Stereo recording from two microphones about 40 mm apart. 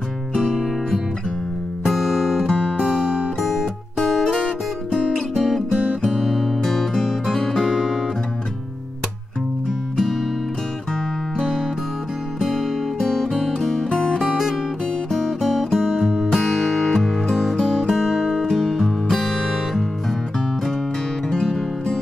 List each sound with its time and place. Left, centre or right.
1.9 s music: centre
5.3 s music: centre
12.4 s music: centre
13.0 s music: centre
13.8 s music: centre
14.2 s music: centre
17.8 s music: centre
21.4 s music: centre